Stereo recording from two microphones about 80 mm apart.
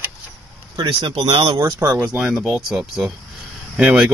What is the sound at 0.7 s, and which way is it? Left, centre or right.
Speech, right.